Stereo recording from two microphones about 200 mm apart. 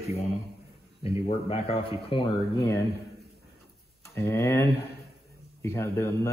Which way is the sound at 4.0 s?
15° left (ahead or behind).